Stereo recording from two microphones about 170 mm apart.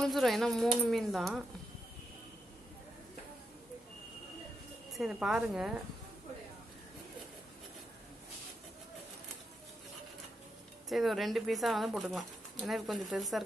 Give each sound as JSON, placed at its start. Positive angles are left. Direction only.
{"t": 0.0, "sound": "speech", "side_deg": 0}
{"t": 4.9, "sound": "speech", "side_deg": -5}
{"t": 10.9, "sound": "speech", "side_deg": 0}